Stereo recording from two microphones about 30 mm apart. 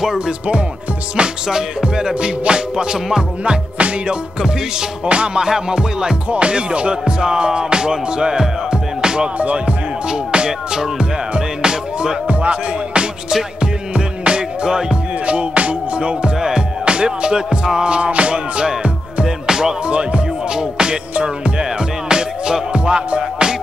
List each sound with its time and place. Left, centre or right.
1.5 s music: right
5.0 s music: right
5.4 s music: right
6.3 s music: right
9.4 s music: right
10.0 s music: right
12.3 s music: right
15.2 s music: right
16.0 s music: right
16.3 s music: centre
16.8 s music: right
19.2 s music: centre
19.9 s music: right